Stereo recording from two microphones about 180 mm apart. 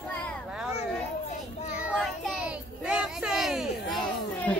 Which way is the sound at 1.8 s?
5° right (ahead or behind).